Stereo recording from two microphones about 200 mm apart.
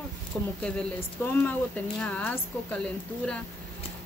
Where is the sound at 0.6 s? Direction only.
5° left (ahead or behind).